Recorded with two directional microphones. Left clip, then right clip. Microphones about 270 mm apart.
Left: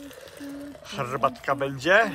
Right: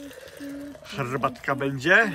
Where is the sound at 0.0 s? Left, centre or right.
Centre.